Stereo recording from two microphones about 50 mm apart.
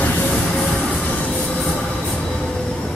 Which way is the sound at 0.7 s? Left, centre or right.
Centre.